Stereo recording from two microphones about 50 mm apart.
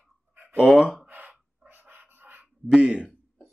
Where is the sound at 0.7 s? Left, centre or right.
Centre.